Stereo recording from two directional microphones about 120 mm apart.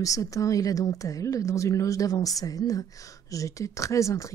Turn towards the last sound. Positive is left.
turn(degrees=25)  # may be behind; listen again after turning